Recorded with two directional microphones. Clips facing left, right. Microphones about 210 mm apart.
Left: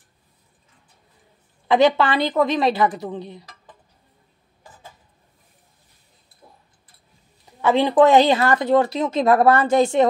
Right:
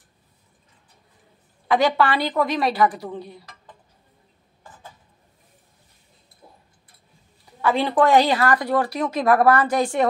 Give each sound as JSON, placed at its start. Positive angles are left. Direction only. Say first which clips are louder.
{"t": 1.7, "sound": "speech", "louder": "left 3 dB", "side_deg": 25}
{"t": 7.6, "sound": "speech", "louder": "left 4 dB", "side_deg": 20}